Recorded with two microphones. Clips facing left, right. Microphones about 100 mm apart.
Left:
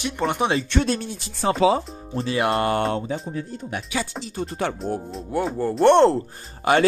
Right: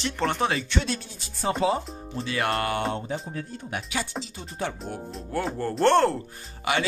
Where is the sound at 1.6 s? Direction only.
90° left.